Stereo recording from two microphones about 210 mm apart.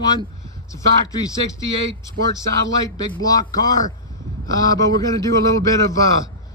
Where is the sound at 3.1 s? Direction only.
15° left (ahead or behind).